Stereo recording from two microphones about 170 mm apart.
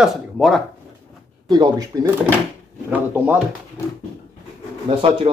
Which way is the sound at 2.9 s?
10° right (ahead or behind).